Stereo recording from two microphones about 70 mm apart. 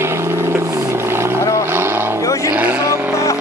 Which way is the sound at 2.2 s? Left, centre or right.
Left.